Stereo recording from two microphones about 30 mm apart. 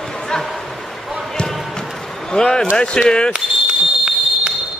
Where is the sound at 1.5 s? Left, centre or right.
Centre.